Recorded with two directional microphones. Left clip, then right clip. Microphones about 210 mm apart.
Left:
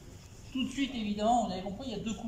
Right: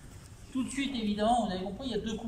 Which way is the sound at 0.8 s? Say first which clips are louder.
Right 3 dB; 5° left (ahead or behind).